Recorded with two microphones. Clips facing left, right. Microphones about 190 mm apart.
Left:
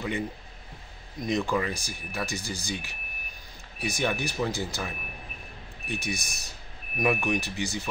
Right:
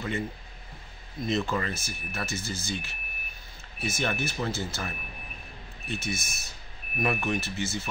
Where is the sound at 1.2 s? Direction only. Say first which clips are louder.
Left 1 dB; 15° left (ahead or behind).